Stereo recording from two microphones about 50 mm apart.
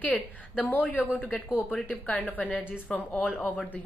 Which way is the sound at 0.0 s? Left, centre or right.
Left.